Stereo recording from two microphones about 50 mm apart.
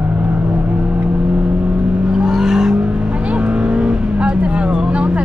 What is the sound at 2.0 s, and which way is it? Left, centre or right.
Vehicle, centre.